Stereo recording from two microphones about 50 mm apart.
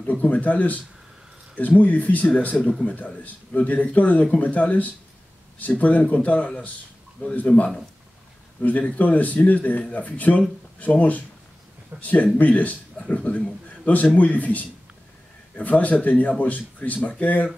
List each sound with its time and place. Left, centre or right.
0.0 s a man's voice: left